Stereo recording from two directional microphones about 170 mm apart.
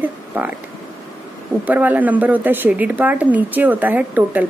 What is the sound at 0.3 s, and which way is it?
Speech, 10° right (ahead or behind).